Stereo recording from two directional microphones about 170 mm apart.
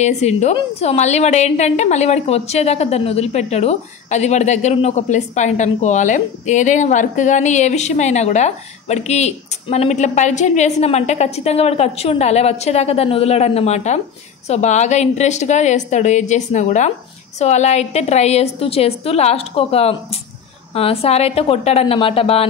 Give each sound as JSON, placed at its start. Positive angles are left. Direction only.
{"t": 0.0, "sound": "a woman's voice", "side_deg": 40}